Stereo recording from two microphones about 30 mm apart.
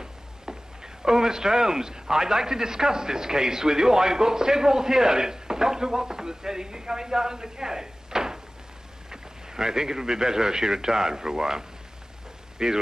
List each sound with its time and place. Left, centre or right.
0.0 s speech: right